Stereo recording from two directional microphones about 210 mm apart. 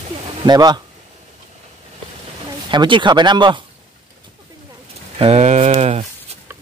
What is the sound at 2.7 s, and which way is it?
Speech, 20° right (ahead or behind).